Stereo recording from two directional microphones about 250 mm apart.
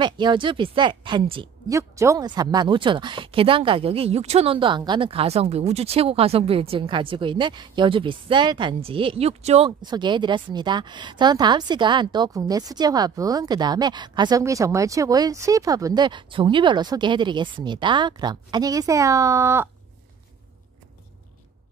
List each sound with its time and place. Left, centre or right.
0.0 s a woman's voice: centre